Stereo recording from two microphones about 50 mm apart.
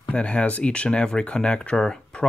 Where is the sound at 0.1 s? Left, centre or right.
Left.